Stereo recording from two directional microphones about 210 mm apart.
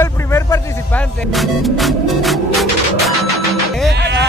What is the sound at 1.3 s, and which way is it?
Music, centre (ahead or behind).